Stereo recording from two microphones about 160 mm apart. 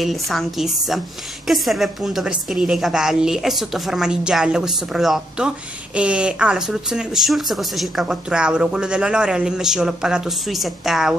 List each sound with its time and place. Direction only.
0.0 s speech: centre (ahead or behind)